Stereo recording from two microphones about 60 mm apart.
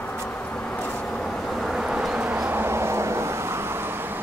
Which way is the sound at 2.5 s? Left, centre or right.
Right.